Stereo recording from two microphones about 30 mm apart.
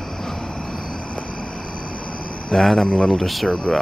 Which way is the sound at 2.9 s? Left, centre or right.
Left.